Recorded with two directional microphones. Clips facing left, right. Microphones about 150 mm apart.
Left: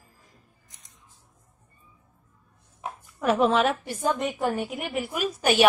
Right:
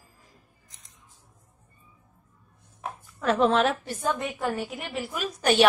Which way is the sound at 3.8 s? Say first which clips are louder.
Left 2 dB; 15° left (ahead or behind).